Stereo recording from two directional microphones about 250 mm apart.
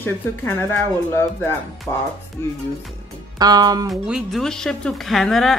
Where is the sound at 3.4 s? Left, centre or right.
Centre.